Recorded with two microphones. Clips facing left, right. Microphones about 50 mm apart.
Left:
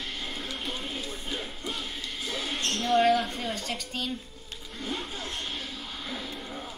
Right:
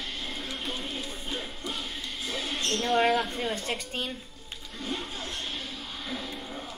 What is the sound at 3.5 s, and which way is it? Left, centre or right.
Speech, right.